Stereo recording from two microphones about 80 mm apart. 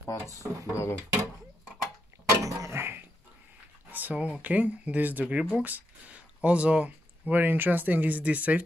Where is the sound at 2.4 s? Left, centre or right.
Right.